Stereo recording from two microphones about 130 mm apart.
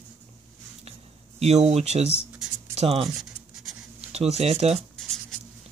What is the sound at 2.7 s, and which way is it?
Speech, 50° right (ahead or behind).